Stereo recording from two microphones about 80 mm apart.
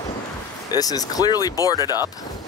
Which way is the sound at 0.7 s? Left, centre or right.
Left.